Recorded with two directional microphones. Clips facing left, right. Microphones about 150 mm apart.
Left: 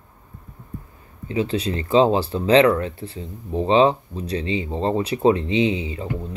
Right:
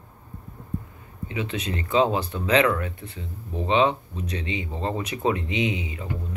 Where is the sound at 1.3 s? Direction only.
35° left (ahead or behind).